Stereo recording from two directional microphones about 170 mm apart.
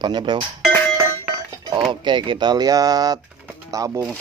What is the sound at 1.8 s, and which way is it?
Speech, 25° right (ahead or behind).